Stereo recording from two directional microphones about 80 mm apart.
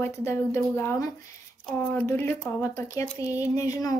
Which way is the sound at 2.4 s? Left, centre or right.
Left.